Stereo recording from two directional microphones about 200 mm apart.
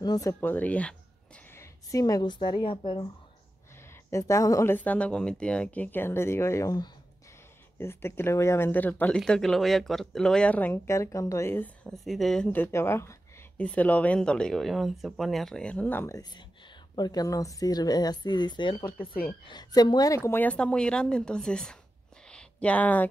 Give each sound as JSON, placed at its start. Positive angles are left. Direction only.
{"t": 0.0, "sound": "speech", "side_deg": 20}
{"t": 4.1, "sound": "a woman's voice", "side_deg": 15}
{"t": 22.3, "sound": "a sound", "side_deg": 5}